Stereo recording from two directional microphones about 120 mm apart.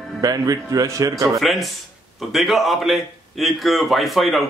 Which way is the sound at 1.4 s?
Centre (ahead or behind).